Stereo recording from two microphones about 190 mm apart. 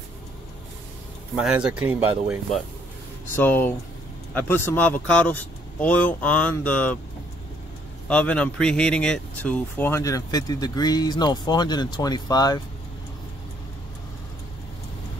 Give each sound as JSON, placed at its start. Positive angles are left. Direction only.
{"t": 1.3, "sound": "speech", "side_deg": -5}
{"t": 3.3, "sound": "speech", "side_deg": 10}
{"t": 8.1, "sound": "speech", "side_deg": 5}